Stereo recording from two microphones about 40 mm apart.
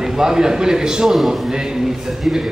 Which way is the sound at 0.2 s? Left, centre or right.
Centre.